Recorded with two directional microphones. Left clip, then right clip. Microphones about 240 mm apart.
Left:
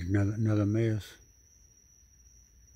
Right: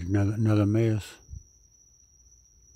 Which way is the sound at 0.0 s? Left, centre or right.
Centre.